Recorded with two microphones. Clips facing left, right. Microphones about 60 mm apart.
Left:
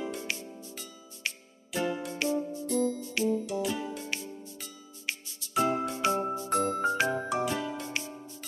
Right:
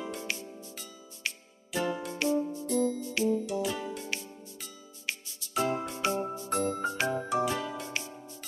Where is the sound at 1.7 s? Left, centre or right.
Centre.